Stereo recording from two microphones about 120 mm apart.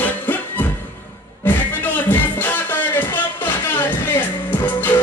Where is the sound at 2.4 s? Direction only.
15° left (ahead or behind).